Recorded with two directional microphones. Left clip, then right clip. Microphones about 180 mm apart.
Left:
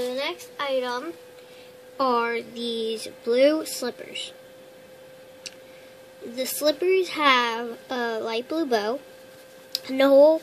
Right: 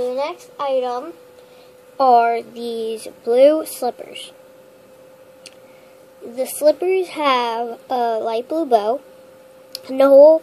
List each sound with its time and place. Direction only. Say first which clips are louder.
0.0 s a woman's voice: right 6 dB; 40° left (ahead or behind)
6.3 s a child's voice: right 8 dB; 25° left (ahead or behind)